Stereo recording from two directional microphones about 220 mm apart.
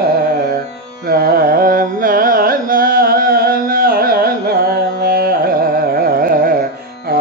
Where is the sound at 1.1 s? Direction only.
40° right (ahead or behind).